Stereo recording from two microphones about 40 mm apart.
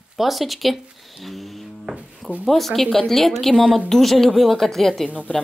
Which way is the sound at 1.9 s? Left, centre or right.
Centre.